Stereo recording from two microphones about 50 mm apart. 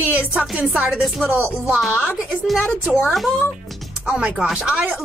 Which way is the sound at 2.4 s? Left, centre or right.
Centre.